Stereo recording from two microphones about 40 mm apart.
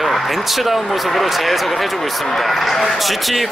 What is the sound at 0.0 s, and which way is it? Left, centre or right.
A man's voice, centre.